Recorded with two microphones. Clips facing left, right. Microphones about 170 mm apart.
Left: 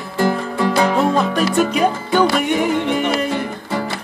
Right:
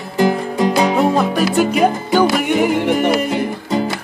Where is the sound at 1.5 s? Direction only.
5° right (ahead or behind).